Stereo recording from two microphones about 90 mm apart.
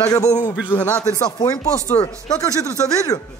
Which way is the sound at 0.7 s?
20° left (ahead or behind).